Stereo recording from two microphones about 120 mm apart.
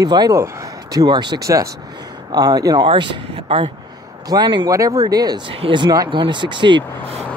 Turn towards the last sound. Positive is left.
turn(degrees=-40)  # may be behind; listen again after turning